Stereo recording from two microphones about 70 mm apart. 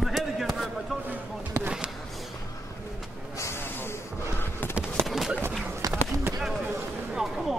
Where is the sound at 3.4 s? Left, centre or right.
Left.